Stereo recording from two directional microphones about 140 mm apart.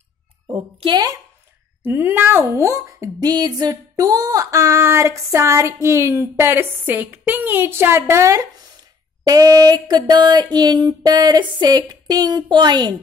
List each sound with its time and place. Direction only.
0.5 s a woman's voice: 45° right (ahead or behind)
1.8 s speech: 15° right (ahead or behind); by 12.9 s 30° right (ahead or behind)